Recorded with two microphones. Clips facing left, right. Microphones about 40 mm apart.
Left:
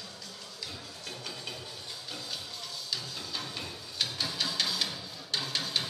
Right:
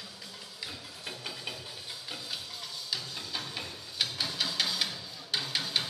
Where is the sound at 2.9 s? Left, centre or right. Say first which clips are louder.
Right 1 dB; centre.